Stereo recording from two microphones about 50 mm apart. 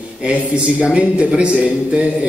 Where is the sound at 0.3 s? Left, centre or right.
Right.